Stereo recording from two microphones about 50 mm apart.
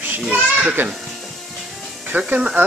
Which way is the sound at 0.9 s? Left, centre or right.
Centre.